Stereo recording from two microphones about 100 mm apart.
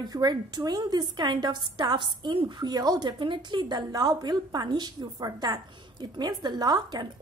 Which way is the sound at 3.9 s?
40° right (ahead or behind).